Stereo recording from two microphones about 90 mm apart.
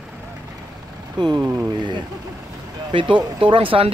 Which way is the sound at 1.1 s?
50° right (ahead or behind).